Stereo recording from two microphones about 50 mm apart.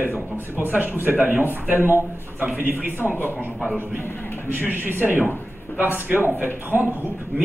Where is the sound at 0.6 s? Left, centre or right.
Right.